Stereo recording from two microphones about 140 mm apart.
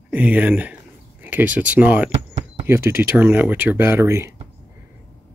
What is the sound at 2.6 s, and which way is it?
Speech, 15° right (ahead or behind).